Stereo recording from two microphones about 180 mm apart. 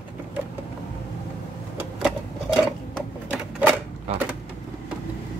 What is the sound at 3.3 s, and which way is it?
Typewriter, 10° right (ahead or behind).